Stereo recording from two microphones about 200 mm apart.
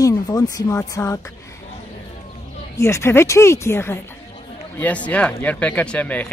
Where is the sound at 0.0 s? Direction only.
20° left (ahead or behind).